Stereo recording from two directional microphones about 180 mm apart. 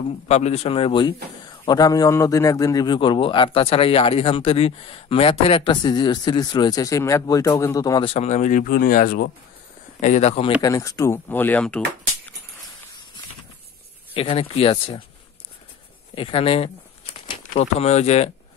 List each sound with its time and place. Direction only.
0.3 s a man's voice: 35° left (ahead or behind); by 8.1 s 20° left (ahead or behind)
8.1 s speech: 40° left (ahead or behind); by 9.3 s 55° left (ahead or behind)
10.0 s speech: 40° left (ahead or behind)
10.6 s speech: 20° left (ahead or behind)
14.1 s speech: 30° left (ahead or behind)
16.2 s speech: 30° left (ahead or behind)